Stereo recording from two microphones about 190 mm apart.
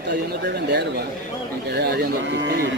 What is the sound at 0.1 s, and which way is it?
Speech, 60° right (ahead or behind).